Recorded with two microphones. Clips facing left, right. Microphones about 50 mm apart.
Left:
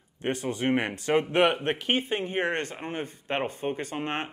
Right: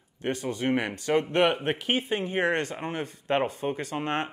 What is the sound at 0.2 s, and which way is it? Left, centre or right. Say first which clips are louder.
Speech: even; centre.